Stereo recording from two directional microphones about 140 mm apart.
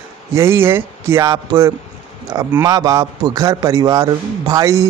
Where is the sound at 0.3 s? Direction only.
20° right (ahead or behind).